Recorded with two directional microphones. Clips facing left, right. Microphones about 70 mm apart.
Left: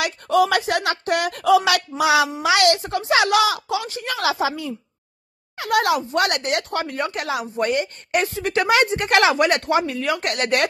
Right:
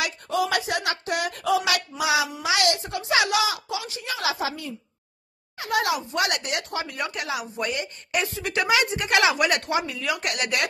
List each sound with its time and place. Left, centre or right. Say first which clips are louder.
0.0 s a woman's voice: left 7 dB; left
2.0 s a woman's voice: left 7 dB; left
4.2 s a woman's voice: left 6 dB; left
5.6 s a woman's voice: left 5 dB; left
7.5 s speech: left 10 dB; left
7.8 s speech: left 5 dB; left
8.4 s speech: left 5 dB; left
8.6 s speech: left 4 dB; left